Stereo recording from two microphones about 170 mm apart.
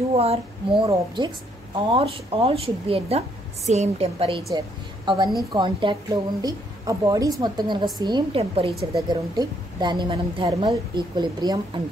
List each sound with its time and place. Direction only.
0.1 s a woman's voice: 35° right (ahead or behind)
8.9 s a woman's voice: 25° right (ahead or behind)